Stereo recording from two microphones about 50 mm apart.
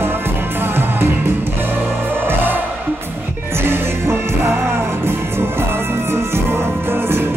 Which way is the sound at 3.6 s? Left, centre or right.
Right.